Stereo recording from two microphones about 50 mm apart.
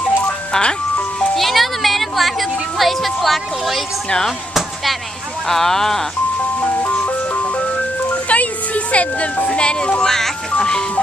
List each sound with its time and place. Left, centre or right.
0.5 s music: centre
1.3 s music: centre
5.5 s speech: centre
6.8 s ice cream truck: left
8.1 s music: left
9.5 s speech: centre